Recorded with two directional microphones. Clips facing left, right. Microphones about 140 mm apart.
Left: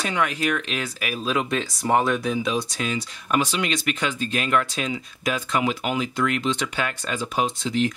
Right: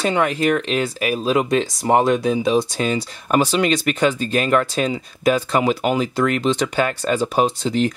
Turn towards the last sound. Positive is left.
turn(degrees=-35)  # may be behind; listen again after turning